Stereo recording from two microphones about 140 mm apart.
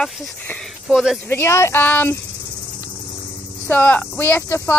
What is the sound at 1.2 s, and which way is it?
Speech, 15° left (ahead or behind).